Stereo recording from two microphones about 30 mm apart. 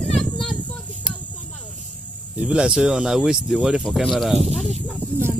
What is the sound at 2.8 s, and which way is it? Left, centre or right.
Speech, centre.